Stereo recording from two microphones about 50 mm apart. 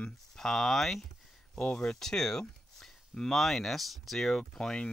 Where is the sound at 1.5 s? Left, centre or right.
Centre.